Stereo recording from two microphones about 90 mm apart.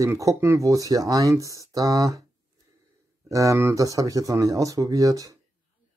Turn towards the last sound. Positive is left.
turn(degrees=-40)  # may be behind; listen again after turning